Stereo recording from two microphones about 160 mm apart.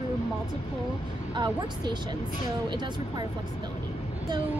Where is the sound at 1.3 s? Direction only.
30° right (ahead or behind).